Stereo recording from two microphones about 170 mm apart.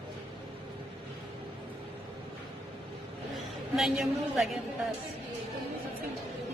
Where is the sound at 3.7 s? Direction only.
Centre (ahead or behind).